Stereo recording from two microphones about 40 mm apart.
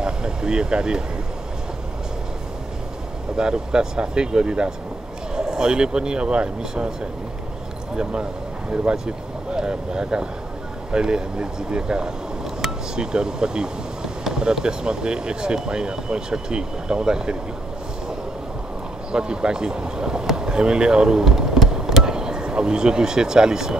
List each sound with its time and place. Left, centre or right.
0.0 s vehicle: centre
3.3 s speech: centre
19.1 s speech: right
21.2 s a sound: centre